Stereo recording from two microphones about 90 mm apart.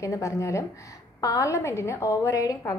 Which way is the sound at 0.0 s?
35° left (ahead or behind).